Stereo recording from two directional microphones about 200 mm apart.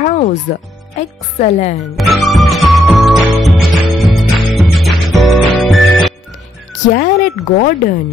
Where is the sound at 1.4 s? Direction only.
35° left (ahead or behind).